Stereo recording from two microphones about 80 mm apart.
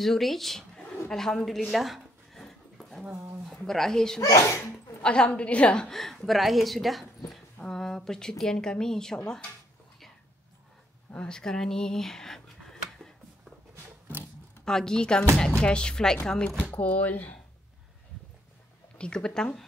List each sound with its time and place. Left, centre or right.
0.0 s a woman's voice: centre
1.7 s a sound: centre
3.4 s a woman's voice: centre
4.2 s a child's voice: left
5.0 s a woman's voice: centre
11.1 s speech: centre
14.6 s speech: centre
16.7 s speech: centre
18.9 s speech: centre